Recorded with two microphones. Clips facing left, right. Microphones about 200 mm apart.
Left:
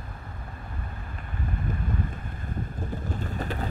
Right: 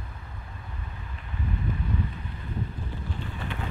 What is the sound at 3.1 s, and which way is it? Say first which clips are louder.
Vehicle: left 4 dB; 45° left (ahead or behind).